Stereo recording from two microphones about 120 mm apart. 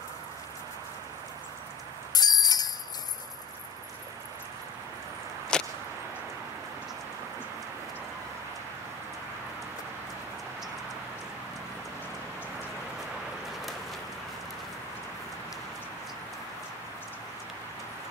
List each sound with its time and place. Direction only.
2.1 s bicycle bell: 35° left (ahead or behind)
5.5 s whip: 5° left (ahead or behind)